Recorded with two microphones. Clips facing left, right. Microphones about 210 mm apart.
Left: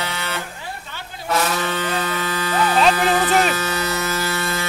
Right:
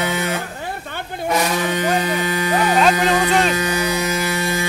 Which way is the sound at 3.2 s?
Centre (ahead or behind).